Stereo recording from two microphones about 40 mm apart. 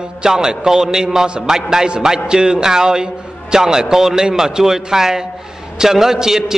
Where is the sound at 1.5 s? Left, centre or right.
Centre.